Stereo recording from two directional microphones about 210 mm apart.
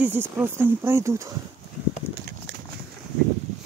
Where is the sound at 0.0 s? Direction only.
10° right (ahead or behind).